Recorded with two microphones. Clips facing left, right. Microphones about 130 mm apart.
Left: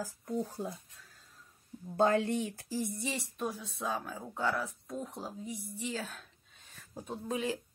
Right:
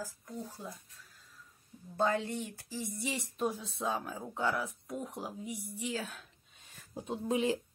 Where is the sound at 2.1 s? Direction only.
65° left (ahead or behind).